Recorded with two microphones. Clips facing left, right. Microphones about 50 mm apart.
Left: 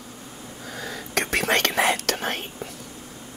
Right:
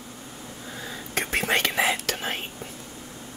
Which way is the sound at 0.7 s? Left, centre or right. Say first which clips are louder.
Left 3 dB; left.